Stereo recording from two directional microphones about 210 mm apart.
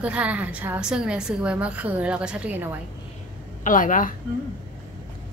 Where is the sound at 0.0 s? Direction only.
5° right (ahead or behind).